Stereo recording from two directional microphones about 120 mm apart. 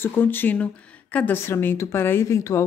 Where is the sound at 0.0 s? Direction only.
20° left (ahead or behind).